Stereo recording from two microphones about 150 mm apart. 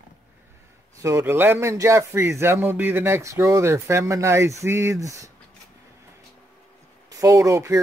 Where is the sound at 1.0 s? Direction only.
15° right (ahead or behind).